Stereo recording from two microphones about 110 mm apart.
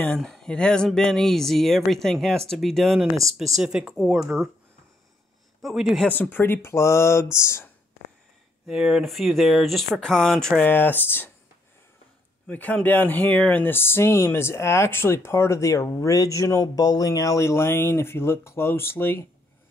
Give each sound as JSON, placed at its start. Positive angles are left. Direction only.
{"t": 0.0, "sound": "speech", "side_deg": 10}
{"t": 5.6, "sound": "speech", "side_deg": 0}
{"t": 6.1, "sound": "speech", "side_deg": 15}
{"t": 8.6, "sound": "speech", "side_deg": -5}
{"t": 10.6, "sound": "speech", "side_deg": 20}
{"t": 12.4, "sound": "speech", "side_deg": 15}